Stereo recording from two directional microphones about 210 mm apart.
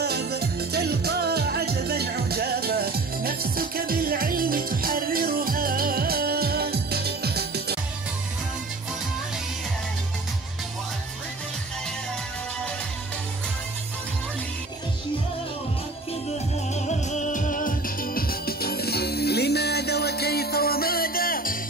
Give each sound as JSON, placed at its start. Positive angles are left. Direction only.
{"t": 0.0, "sound": "music", "side_deg": -50}
{"t": 16.7, "sound": "music", "side_deg": 35}